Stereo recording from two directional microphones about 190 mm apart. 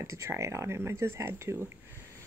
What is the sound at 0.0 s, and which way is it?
Speech, 15° right (ahead or behind).